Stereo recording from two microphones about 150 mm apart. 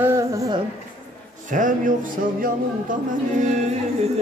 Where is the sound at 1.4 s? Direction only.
60° right (ahead or behind).